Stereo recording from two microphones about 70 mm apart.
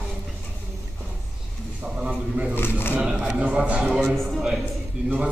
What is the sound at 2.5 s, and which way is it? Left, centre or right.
Speech, left.